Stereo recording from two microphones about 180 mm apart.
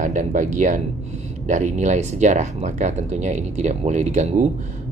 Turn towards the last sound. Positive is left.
turn(degrees=-40)  # may be behind; listen again after turning